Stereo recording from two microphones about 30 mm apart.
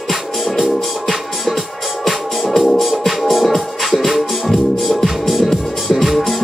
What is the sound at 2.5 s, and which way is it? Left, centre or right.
Music, centre.